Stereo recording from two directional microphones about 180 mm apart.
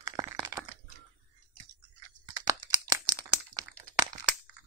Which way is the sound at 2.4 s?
20° right (ahead or behind).